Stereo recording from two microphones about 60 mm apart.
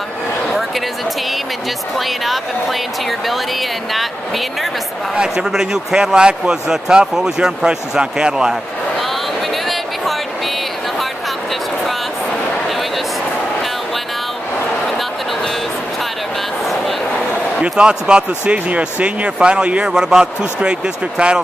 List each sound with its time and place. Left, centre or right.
0.5 s a sound: centre
2.0 s speech: centre
5.1 s speech: centre
17.6 s speech: centre